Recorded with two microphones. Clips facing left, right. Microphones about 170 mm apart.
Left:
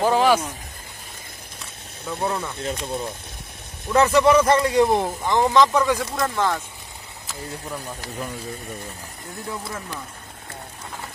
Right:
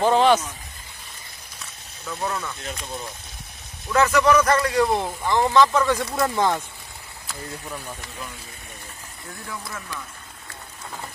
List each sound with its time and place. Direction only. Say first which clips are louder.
0.0 s speech: right 1 dB; 5° left (ahead or behind)
2.0 s a man's voice: left 3 dB; 30° left (ahead or behind); by 6.0 s 15° left (ahead or behind)
6.1 s speech: right 1 dB; 15° right (ahead or behind)
9.5 s a man's voice: left 3 dB; 25° left (ahead or behind)